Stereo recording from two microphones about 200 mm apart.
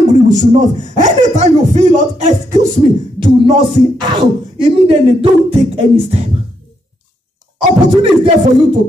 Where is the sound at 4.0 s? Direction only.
25° right (ahead or behind).